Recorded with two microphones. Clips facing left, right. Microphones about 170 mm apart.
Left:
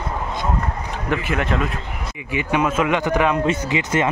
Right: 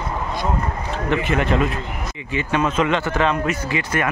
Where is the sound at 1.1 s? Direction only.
5° left (ahead or behind).